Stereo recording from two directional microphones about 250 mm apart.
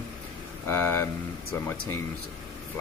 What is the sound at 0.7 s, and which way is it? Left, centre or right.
Speech, centre.